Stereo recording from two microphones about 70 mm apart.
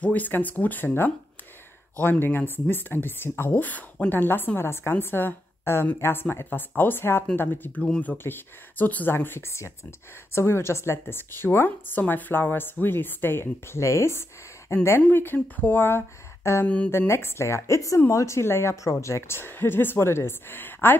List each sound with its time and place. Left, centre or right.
0.0 s a woman's voice: left
16.6 s speech: centre
16.9 s a woman's voice: left